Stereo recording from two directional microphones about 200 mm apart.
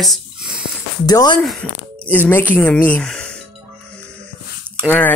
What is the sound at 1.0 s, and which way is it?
Speech, 20° left (ahead or behind).